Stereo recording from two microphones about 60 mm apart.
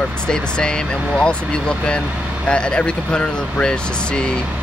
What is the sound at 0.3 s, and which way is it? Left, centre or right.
Speech, centre.